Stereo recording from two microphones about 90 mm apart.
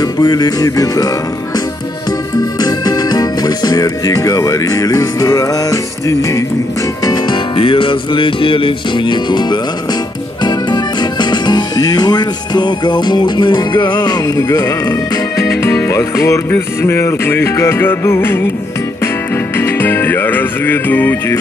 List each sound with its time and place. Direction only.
0.0 s music: 45° left (ahead or behind)
2.6 s music: 50° left (ahead or behind)
7.5 s music: 70° left (ahead or behind); by 15.0 s 45° left (ahead or behind)
15.9 s music: 35° left (ahead or behind)
19.5 s music: 25° left (ahead or behind)